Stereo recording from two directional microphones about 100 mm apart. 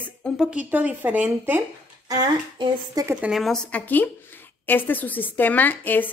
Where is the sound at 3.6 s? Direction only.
15° left (ahead or behind).